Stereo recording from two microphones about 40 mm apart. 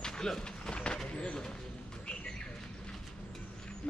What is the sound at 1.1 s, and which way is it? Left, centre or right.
Speech, left.